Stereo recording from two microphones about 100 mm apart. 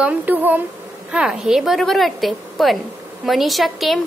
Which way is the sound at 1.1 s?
5° right (ahead or behind).